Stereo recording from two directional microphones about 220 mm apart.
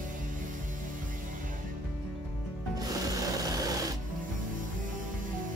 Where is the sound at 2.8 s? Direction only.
15° right (ahead or behind).